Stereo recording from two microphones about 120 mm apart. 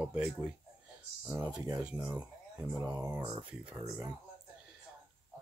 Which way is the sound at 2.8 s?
25° right (ahead or behind).